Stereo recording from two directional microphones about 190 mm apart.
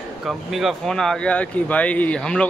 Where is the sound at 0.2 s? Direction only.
Centre (ahead or behind).